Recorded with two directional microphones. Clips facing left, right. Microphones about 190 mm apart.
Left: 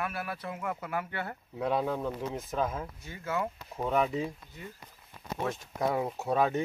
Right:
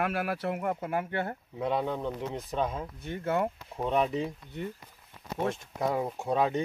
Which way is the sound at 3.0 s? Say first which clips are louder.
Right 5 dB; 60° right (ahead or behind).